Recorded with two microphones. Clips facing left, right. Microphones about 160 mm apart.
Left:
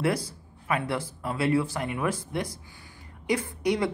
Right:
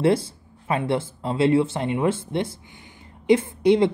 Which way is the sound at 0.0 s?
25° right (ahead or behind).